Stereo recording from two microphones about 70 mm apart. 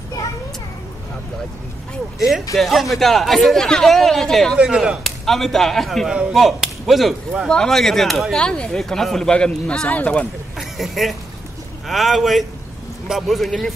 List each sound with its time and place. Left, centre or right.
2.5 s speech: centre
4.6 s speech: centre
5.0 s speech: centre
6.3 s whip: centre
7.4 s speech: centre
8.4 s a man's voice: centre
9.8 s speech: left
10.6 s speech: centre